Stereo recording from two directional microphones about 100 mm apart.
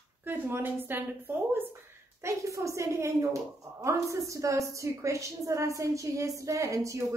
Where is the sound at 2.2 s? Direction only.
30° right (ahead or behind).